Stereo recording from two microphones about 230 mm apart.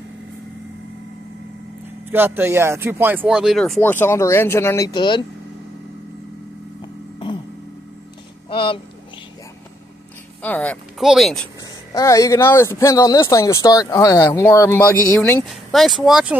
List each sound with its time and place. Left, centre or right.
2.0 s speech: centre
8.5 s a sound: left
10.4 s speech: centre
11.9 s speech: centre